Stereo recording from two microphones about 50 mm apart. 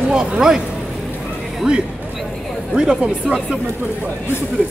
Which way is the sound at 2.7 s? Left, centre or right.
Centre.